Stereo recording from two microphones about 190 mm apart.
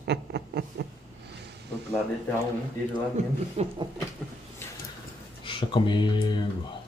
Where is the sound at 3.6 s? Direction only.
35° right (ahead or behind).